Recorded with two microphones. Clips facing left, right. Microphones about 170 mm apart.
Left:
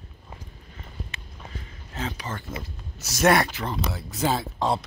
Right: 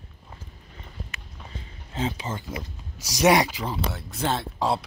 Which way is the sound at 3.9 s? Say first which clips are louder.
Left 5 dB; centre (ahead or behind).